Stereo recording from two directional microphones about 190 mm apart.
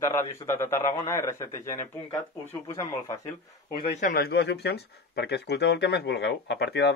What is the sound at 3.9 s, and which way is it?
Speech, 45° left (ahead or behind).